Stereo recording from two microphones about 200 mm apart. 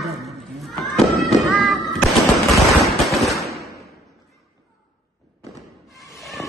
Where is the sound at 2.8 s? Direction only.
Centre (ahead or behind).